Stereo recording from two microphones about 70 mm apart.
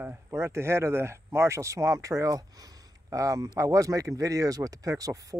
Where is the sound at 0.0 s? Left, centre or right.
Right.